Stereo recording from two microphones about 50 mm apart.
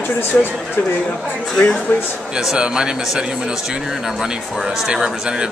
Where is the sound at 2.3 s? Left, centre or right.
Centre.